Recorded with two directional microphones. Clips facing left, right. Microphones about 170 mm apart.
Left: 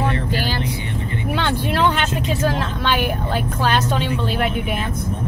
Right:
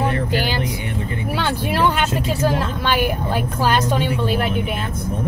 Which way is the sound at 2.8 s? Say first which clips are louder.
Left 1 dB; 10° right (ahead or behind).